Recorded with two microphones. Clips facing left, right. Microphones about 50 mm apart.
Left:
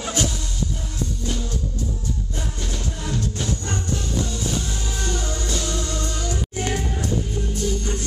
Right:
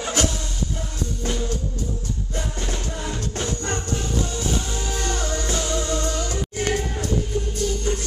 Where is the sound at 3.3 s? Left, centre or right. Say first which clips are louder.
Right 1 dB; right.